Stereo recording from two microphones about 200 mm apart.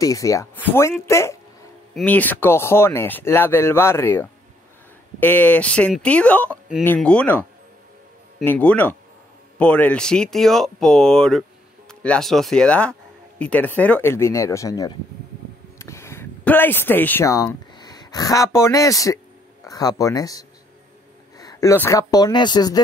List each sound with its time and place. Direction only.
0.0 s speech: 15° left (ahead or behind)
8.5 s speech: 5° left (ahead or behind)